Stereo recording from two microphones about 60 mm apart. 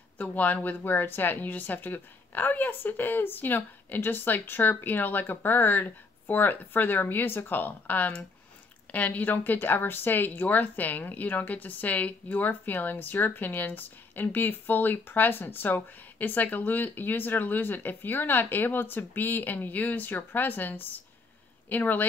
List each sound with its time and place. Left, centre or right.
0.2 s speech: left